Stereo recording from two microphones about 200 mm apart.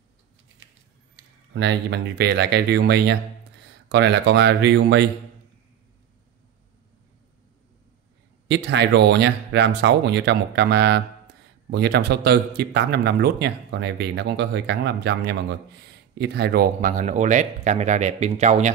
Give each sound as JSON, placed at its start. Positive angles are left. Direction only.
{"t": 1.5, "sound": "speech", "side_deg": -60}
{"t": 8.5, "sound": "speech", "side_deg": -60}